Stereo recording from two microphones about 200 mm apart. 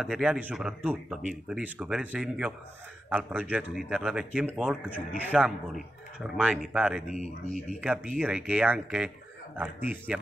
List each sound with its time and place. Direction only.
0.0 s speech: 5° right (ahead or behind)
7.1 s speech: 40° right (ahead or behind)
7.5 s speech: 5° right (ahead or behind)